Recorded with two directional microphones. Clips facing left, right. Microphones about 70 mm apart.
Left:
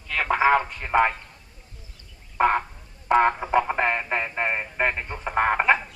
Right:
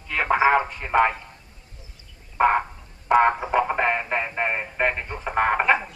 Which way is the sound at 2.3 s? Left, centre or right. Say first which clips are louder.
Right 2 dB; centre.